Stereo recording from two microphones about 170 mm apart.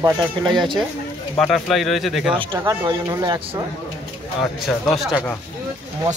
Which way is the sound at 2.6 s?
20° right (ahead or behind).